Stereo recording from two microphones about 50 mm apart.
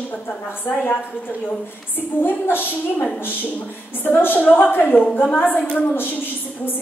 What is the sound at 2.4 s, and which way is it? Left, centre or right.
Speech, left.